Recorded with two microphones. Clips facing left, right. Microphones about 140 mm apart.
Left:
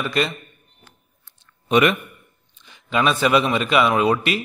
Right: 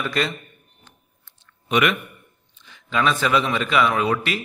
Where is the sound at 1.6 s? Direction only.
35° left (ahead or behind).